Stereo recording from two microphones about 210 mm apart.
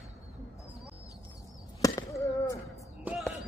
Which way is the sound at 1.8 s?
15° left (ahead or behind).